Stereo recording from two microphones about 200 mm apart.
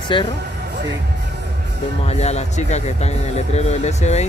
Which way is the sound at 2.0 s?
35° left (ahead or behind).